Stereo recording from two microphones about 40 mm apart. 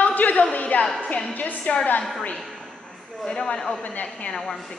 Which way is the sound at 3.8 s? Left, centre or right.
Left.